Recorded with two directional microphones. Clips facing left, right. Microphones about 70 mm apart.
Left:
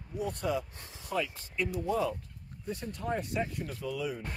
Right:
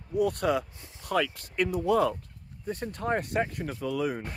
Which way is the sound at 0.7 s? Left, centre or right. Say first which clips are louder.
Left 1 dB; left.